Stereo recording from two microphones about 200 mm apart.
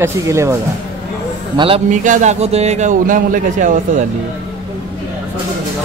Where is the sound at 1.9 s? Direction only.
40° right (ahead or behind).